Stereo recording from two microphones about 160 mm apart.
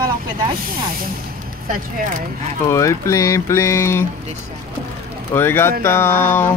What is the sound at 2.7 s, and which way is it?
Speech, 20° left (ahead or behind).